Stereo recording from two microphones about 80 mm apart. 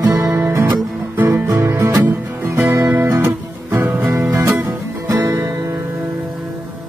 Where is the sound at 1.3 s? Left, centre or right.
Right.